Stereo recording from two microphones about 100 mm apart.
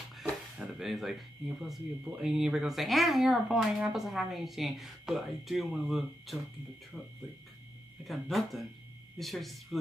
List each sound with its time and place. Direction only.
0.1 s speech: 5° right (ahead or behind)
8.0 s speech: centre (ahead or behind)